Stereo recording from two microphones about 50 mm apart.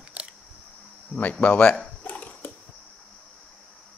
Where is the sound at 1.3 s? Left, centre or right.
Left.